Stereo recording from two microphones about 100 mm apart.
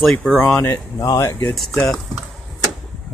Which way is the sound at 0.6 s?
25° left (ahead or behind).